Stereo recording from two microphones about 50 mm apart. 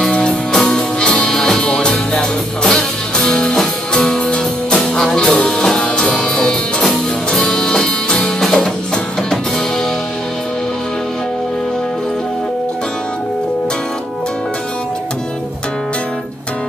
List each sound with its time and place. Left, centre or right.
0.0 s music: centre
6.8 s music: centre
7.4 s music: centre